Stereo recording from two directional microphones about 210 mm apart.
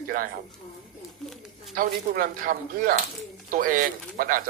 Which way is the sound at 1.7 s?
40° right (ahead or behind).